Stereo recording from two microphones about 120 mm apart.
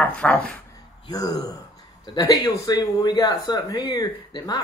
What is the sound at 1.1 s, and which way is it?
A man's voice, 30° left (ahead or behind).